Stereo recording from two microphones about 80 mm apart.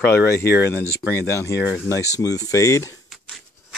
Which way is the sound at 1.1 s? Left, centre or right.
Left.